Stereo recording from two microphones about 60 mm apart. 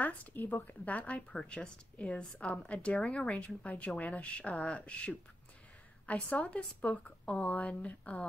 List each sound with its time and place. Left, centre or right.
0.0 s a woman's voice: left